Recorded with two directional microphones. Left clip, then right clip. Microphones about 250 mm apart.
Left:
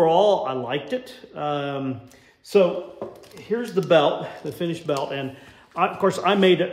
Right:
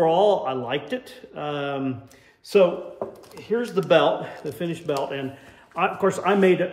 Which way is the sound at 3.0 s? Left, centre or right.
Centre.